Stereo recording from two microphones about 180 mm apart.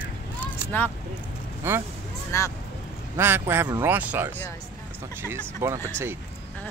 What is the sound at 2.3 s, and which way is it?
Speech, 15° left (ahead or behind).